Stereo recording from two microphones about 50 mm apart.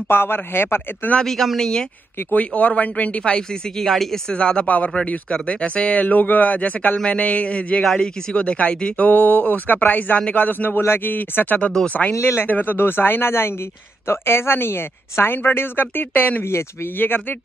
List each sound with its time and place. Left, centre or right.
0.1 s speech: left
1.2 s speech: centre
2.3 s speech: left
3.7 s speech: centre
4.3 s speech: centre
12.1 s speech: left
12.4 s speech: left
12.7 s speech: left